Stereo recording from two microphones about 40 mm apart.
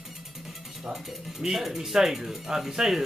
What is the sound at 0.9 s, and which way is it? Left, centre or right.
Speech, centre.